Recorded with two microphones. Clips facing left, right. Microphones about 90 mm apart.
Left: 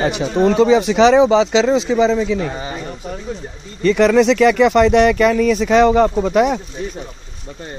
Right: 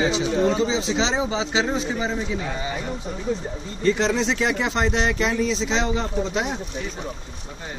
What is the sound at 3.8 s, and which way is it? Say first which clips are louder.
Speech: left 9 dB; 65° left (ahead or behind).